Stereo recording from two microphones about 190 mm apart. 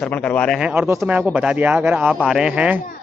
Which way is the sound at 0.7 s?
10° right (ahead or behind).